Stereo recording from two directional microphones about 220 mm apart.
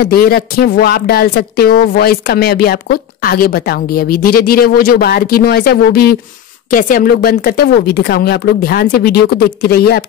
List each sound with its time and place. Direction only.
0.0 s speech: 45° left (ahead or behind)